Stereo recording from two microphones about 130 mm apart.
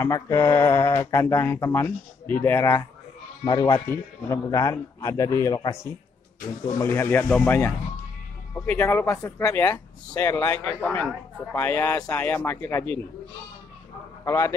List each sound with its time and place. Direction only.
0.0 s a man's voice: 25° left (ahead or behind)
3.4 s speech: 35° left (ahead or behind)
3.9 s a man's voice: 25° left (ahead or behind); by 9.5 s 5° left (ahead or behind)
9.5 s speech: 20° left (ahead or behind)
14.2 s speech: 20° left (ahead or behind)